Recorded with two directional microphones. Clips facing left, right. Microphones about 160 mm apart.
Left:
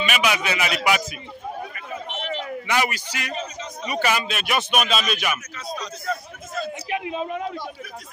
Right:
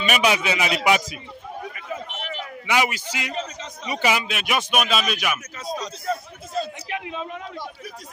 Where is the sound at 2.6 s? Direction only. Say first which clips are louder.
Right 3 dB; 15° right (ahead or behind).